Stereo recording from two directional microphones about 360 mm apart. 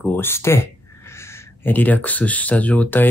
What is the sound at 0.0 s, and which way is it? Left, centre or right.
Speech, centre.